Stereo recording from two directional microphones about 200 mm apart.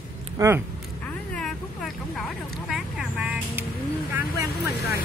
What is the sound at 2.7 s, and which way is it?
Vehicle, 5° right (ahead or behind).